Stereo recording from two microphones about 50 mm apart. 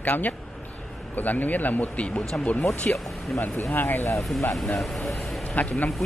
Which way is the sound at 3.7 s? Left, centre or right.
Left.